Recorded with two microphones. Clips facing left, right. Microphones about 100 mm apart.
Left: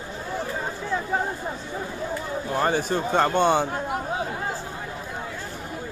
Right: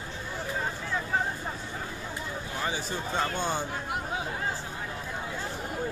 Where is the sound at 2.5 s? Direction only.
55° left (ahead or behind).